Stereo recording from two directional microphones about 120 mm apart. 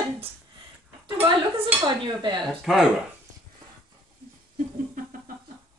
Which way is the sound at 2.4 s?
Centre (ahead or behind).